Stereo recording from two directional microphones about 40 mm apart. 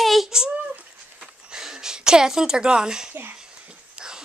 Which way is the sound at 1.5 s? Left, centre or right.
Centre.